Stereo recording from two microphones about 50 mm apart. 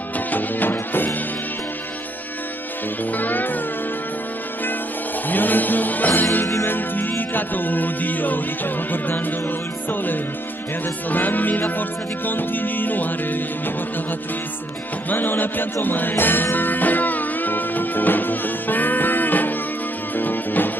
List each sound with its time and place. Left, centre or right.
0.3 s music: left
3.1 s music: left
5.3 s music: left
15.0 s music: left